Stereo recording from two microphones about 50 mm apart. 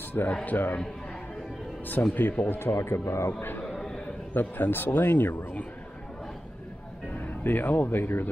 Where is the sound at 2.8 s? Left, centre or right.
Left.